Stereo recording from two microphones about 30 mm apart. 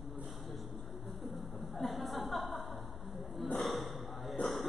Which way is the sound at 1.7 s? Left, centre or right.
Centre.